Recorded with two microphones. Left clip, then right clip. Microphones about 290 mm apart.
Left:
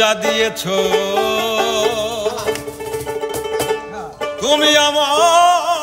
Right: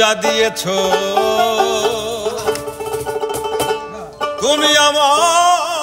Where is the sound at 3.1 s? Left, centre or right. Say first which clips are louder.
Right 1 dB; centre.